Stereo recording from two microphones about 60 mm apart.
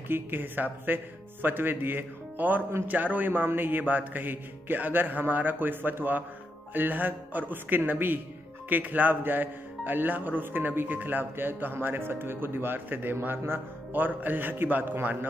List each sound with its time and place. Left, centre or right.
0.1 s speech: right